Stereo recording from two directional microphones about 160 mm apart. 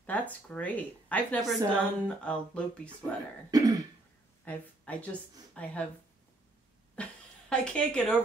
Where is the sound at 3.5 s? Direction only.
25° right (ahead or behind).